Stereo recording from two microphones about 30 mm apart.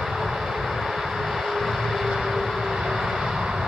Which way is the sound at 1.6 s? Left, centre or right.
Centre.